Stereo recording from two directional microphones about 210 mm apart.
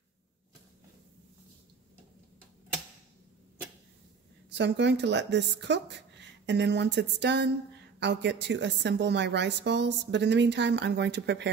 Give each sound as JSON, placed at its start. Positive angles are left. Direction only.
{"t": 4.5, "sound": "a woman's voice", "side_deg": -55}